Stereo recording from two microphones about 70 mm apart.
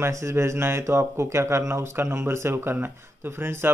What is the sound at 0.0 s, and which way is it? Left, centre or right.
Speech, right.